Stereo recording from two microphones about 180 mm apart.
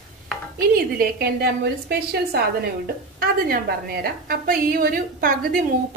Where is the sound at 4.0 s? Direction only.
55° right (ahead or behind).